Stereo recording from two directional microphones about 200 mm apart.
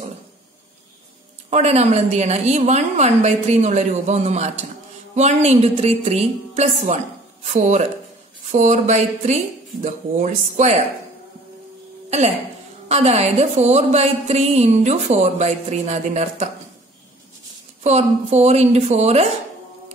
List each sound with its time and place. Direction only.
1.5 s a woman's voice: 35° right (ahead or behind)
12.8 s a woman's voice: 35° right (ahead or behind)
17.8 s a woman's voice: 35° right (ahead or behind)